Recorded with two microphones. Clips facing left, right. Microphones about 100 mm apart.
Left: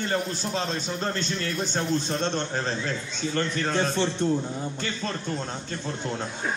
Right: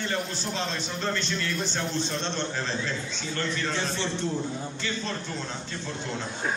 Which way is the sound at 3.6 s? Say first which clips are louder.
Left 5 dB; 45° left (ahead or behind).